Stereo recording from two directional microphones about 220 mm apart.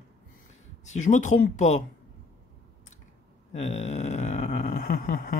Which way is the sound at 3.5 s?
30° left (ahead or behind).